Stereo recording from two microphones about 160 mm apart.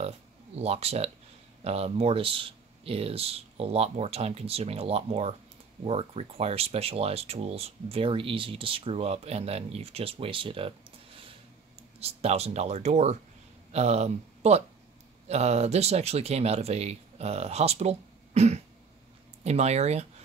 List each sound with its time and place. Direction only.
0.6 s speech: 40° right (ahead or behind)
12.0 s speech: 40° right (ahead or behind)